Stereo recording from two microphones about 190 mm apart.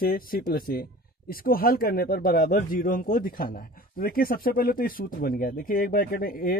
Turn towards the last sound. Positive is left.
turn(degrees=50)  # may be behind; listen again after turning